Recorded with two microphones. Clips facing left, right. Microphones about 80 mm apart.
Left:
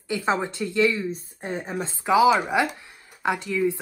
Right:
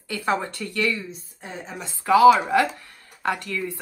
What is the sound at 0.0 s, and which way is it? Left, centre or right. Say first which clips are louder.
Speech: left 1 dB; left.